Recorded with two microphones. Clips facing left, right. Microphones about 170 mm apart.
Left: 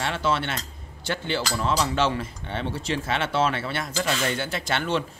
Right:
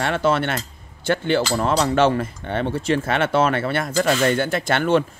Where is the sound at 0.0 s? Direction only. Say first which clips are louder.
Right 6 dB; 55° right (ahead or behind).